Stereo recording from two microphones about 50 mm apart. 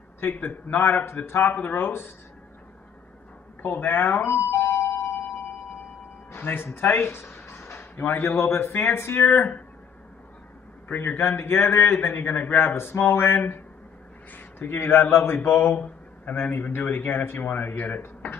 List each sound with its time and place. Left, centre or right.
0.2 s a man's voice: left
1.5 s a man's voice: left
1.9 s a man's voice: left
3.6 s a man's voice: left
6.3 s a man's voice: left
8.3 s speech: left
10.9 s a man's voice: left
14.3 s a sound: left
14.8 s a man's voice: left